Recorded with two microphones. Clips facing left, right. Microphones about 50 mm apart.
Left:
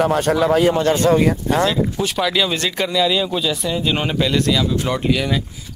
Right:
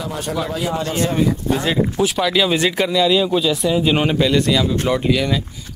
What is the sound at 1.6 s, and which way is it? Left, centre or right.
Speech, centre.